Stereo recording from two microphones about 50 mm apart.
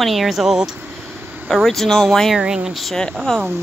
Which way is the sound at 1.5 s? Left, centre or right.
Centre.